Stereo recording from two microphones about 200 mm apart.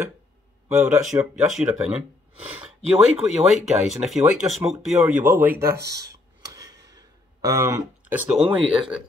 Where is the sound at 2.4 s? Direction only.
5° right (ahead or behind).